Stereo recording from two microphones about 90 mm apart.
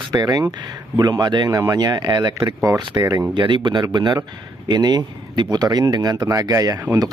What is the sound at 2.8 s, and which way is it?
Speech, 60° right (ahead or behind).